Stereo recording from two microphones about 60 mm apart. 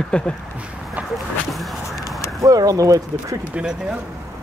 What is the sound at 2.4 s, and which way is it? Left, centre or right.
Speech, right.